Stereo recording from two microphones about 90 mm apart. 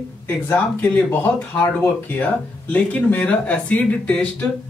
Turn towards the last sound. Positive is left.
turn(degrees=15)  # may be behind; listen again after turning